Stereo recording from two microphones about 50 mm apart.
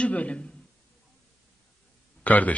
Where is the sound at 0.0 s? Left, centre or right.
Left.